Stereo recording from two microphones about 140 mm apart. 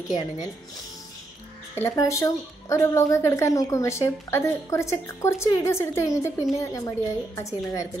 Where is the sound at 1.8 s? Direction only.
25° left (ahead or behind).